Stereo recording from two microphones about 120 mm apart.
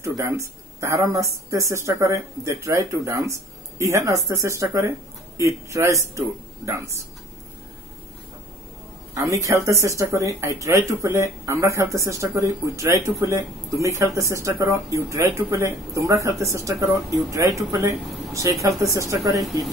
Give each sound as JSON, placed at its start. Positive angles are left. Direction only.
{"t": 0.0, "sound": "speech", "side_deg": -25}
{"t": 9.1, "sound": "speech", "side_deg": -25}